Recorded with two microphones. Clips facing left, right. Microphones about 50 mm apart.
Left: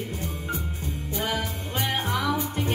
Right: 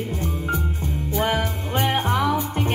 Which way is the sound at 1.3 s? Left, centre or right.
Right.